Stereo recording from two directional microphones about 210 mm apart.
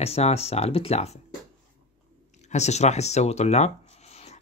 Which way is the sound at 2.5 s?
30° left (ahead or behind).